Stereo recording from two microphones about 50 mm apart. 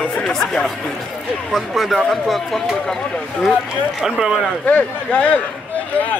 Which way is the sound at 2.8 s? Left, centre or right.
Centre.